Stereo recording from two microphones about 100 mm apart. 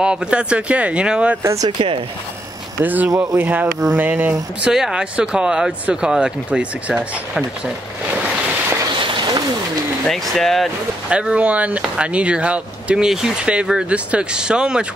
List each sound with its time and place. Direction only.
0.0 s speech: 10° right (ahead or behind)
1.4 s speech: 30° right (ahead or behind)
2.8 s speech: 15° right (ahead or behind)
4.7 s speech: 5° right (ahead or behind)
9.0 s a sound: 50° right (ahead or behind)
10.0 s speech: 5° left (ahead or behind)
11.1 s speech: 10° right (ahead or behind)